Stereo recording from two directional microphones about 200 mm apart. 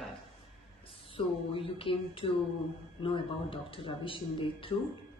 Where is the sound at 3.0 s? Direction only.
25° left (ahead or behind).